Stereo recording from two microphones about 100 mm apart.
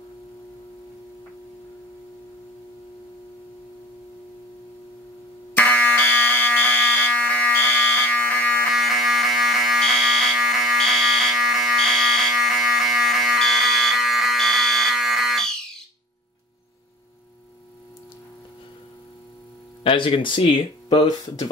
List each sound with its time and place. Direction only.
5.6 s fire alarm: 15° left (ahead or behind)
8.7 s fire alarm: centre (ahead or behind)
19.8 s speech: 60° left (ahead or behind)